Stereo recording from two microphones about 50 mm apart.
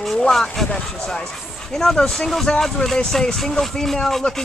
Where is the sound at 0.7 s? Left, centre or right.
Centre.